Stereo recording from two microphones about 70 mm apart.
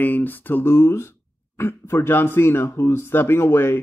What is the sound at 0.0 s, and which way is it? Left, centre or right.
Speech, left.